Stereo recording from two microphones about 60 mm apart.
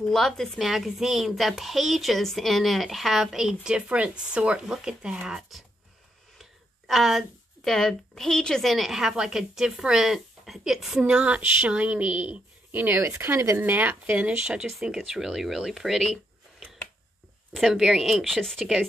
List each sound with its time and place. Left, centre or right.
0.0 s a woman's voice: centre
0.6 s a woman's voice: centre
6.9 s a woman's voice: centre
8.7 s a woman's voice: centre
11.0 s a woman's voice: centre; by 13.0 s right
13.0 s speech: right
13.6 s speech: right
14.4 s a woman's voice: centre
17.7 s a woman's voice: centre